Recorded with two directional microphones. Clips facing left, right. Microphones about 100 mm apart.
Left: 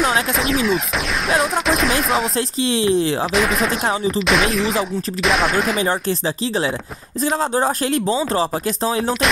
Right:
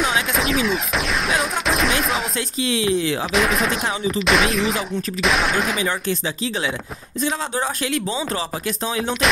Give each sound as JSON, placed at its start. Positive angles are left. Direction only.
{"t": 0.0, "sound": "a sound", "side_deg": 0}
{"t": 2.3, "sound": "speech", "side_deg": 35}
{"t": 3.3, "sound": "speech", "side_deg": 0}
{"t": 5.8, "sound": "speech", "side_deg": 35}